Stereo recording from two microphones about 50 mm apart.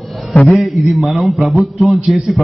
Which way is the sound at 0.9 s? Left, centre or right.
Centre.